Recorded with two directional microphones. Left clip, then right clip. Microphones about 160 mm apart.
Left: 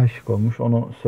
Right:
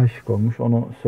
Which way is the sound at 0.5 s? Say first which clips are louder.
Even; centre (ahead or behind).